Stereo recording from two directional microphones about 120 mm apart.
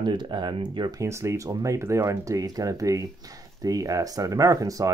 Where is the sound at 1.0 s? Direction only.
25° right (ahead or behind).